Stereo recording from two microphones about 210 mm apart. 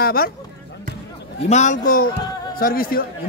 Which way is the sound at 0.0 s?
45° left (ahead or behind).